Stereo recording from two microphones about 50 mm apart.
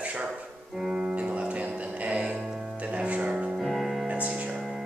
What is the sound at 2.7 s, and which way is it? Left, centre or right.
Music, right.